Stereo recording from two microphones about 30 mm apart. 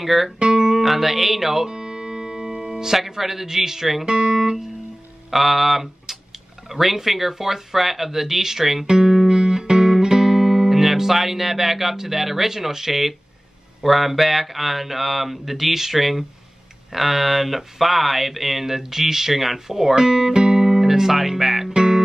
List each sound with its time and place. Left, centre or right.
0.0 s speech: centre
0.4 s guitar: right
0.7 s speech: centre
1.7 s music: centre
3.2 s speech: centre
4.0 s speech: right
4.4 s guitar: centre
5.3 s speech: centre
8.9 s music: centre
10.5 s speech: centre
20.0 s music: centre
20.7 s music: centre
21.7 s music: right